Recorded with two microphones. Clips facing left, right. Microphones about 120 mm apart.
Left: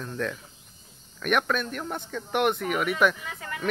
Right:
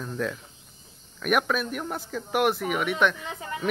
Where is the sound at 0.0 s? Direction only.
5° right (ahead or behind).